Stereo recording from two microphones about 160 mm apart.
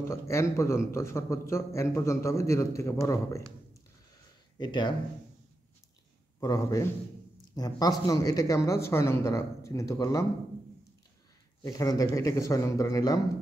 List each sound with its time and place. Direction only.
0.1 s a man's voice: 20° left (ahead or behind)
4.6 s a woman's voice: 30° left (ahead or behind)
6.4 s a woman's voice: 20° left (ahead or behind)
11.6 s a woman's voice: 25° left (ahead or behind)